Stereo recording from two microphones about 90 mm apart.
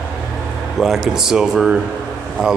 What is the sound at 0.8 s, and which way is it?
Speech, 5° right (ahead or behind).